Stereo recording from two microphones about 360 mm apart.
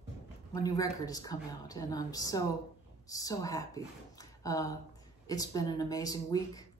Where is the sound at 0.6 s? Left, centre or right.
Centre.